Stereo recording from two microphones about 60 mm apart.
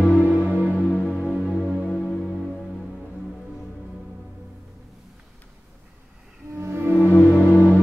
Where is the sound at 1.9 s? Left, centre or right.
Centre.